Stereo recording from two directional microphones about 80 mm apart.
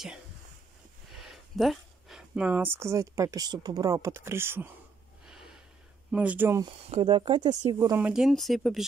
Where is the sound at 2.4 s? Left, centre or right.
Right.